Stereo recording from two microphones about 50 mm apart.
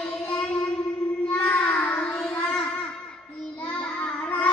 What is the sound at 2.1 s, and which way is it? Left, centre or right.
Child singing, centre.